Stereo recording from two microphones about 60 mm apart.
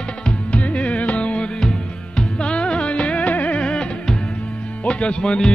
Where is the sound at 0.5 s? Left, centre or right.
Left.